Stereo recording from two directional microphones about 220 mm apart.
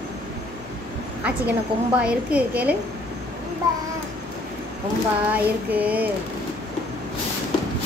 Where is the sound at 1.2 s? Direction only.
5° right (ahead or behind).